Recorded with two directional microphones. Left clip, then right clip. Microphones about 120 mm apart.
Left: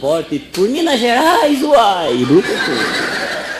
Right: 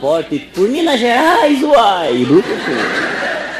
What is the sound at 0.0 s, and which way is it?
Speech, centre (ahead or behind).